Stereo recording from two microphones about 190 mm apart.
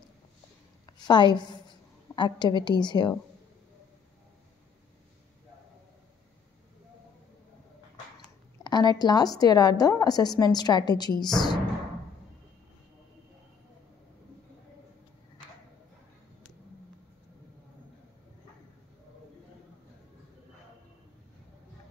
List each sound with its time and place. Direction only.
0.9 s a woman's voice: 25° left (ahead or behind)
8.2 s a sound: 20° left (ahead or behind)
9.4 s a woman's voice: 20° left (ahead or behind)